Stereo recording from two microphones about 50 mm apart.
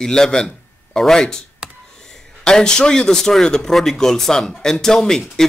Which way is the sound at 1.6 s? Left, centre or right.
Centre.